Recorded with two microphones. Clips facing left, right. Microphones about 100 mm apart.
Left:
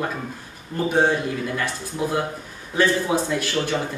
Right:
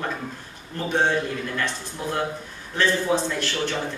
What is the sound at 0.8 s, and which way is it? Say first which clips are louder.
A man's voice: left 2 dB; 10° left (ahead or behind).